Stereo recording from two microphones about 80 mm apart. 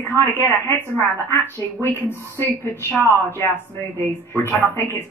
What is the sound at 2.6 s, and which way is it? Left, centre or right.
A woman's voice, left.